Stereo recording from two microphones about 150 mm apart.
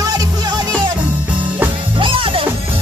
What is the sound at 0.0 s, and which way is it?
Music, 25° right (ahead or behind).